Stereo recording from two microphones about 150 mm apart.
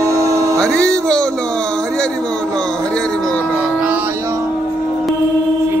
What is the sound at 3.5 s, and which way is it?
Music, 10° right (ahead or behind).